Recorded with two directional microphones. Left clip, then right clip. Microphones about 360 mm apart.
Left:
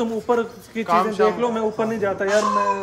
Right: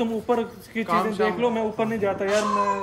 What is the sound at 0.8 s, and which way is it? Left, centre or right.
Speech, centre.